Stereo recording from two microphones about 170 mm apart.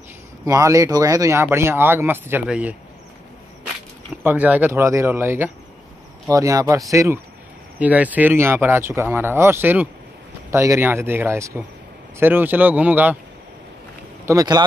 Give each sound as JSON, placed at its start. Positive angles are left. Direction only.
{"t": 0.5, "sound": "speech", "side_deg": -20}
{"t": 4.2, "sound": "speech", "side_deg": -10}
{"t": 14.2, "sound": "speech", "side_deg": -20}